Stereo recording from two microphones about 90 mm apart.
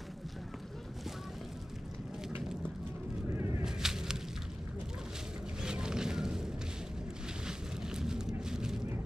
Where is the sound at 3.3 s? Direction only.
30° right (ahead or behind).